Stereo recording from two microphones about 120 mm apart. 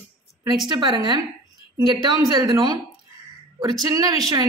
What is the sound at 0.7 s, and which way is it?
A woman's voice, 40° right (ahead or behind).